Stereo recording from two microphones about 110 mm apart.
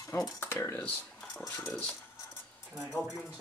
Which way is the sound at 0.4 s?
20° left (ahead or behind).